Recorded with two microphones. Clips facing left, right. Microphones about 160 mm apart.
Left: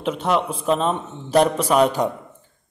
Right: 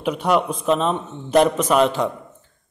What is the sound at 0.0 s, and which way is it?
Speech, centre (ahead or behind).